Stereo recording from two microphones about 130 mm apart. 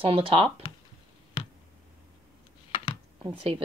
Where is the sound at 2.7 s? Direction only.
35° left (ahead or behind).